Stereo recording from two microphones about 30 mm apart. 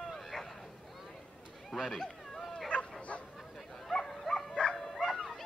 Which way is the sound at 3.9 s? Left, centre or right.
Centre.